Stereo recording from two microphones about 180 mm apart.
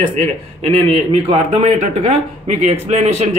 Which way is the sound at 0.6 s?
35° right (ahead or behind).